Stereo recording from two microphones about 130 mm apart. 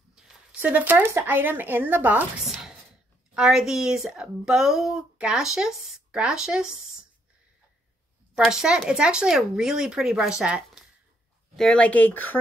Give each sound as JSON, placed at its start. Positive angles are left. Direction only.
{"t": 0.1, "sound": "speech", "side_deg": -5}
{"t": 2.4, "sound": "a sound", "side_deg": -5}
{"t": 3.3, "sound": "speech", "side_deg": -5}
{"t": 8.4, "sound": "speech", "side_deg": -5}
{"t": 11.5, "sound": "speech", "side_deg": 5}